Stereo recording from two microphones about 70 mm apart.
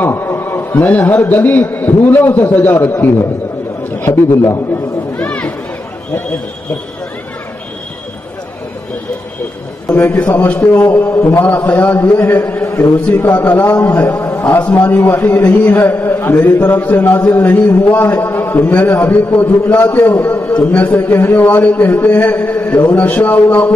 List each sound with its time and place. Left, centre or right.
0.0 s a sound: left
0.7 s a man's voice: left
5.1 s chatter: centre
9.8 s a man's voice: left
11.1 s a man's voice: left
11.5 s a man's voice: left
12.3 s a man's voice: left